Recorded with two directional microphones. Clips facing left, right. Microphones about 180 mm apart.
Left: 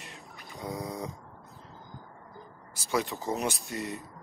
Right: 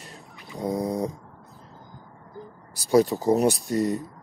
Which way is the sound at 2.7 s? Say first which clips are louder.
Right 11 dB; 35° right (ahead or behind).